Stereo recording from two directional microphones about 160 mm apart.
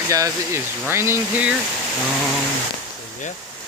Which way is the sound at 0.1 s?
20° right (ahead or behind).